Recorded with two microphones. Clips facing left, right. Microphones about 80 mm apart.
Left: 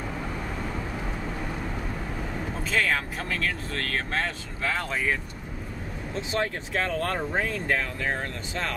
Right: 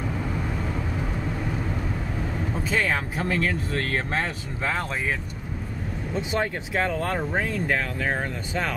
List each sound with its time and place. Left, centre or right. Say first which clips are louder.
2.5 s speech: right 1 dB; centre
3.3 s speech: right 7 dB; centre
6.1 s speech: right 2 dB; centre